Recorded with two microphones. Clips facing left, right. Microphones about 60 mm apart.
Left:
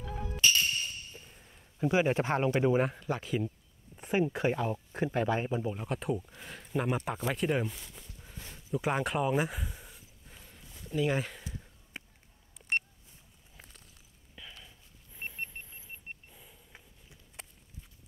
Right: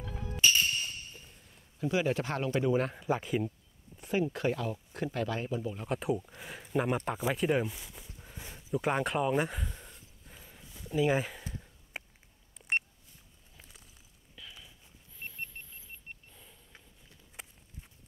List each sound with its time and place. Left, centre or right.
1.4 s speech: left
3.0 s speech: centre
3.9 s speech: left
5.8 s speech: centre
8.7 s a sound: centre
12.6 s a sound: centre
15.1 s vehicle: left
16.3 s sniff: centre